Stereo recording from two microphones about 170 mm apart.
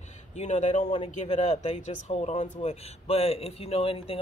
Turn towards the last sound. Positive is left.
turn(degrees=35)  # may be behind; listen again after turning